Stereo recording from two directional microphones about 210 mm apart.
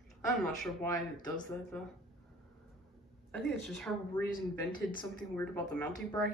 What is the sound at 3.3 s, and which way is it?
A woman's voice, centre (ahead or behind).